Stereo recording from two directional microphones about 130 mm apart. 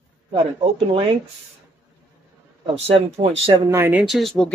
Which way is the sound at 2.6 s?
50° right (ahead or behind).